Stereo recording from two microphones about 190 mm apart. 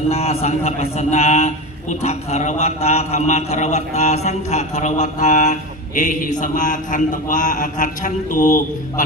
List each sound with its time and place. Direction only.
0.1 s a man's voice: 35° left (ahead or behind)